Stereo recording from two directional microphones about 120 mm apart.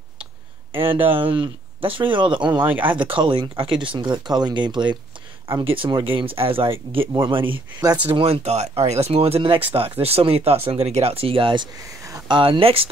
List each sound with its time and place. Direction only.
0.7 s speech: 50° right (ahead or behind)
2.6 s speech: 15° right (ahead or behind)
3.1 s speech: 45° right (ahead or behind)
7.8 s speech: 30° right (ahead or behind)
8.1 s speech: 55° right (ahead or behind)